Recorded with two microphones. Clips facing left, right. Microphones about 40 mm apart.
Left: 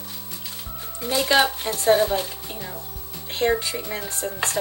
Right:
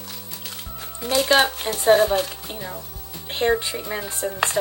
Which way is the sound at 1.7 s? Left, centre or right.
Right.